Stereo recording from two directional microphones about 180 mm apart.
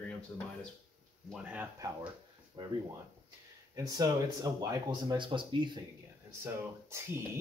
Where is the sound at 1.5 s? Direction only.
10° right (ahead or behind).